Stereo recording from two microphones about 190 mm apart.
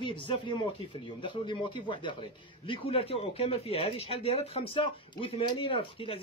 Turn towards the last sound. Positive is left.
turn(degrees=30)  # may be behind; listen again after turning